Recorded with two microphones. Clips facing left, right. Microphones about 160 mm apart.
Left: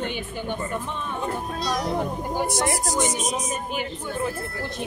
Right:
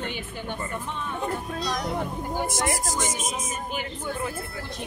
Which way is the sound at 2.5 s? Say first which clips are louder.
Left 3 dB; 90° right.